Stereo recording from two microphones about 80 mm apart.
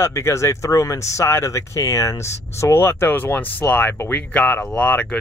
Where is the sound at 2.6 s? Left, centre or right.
Left.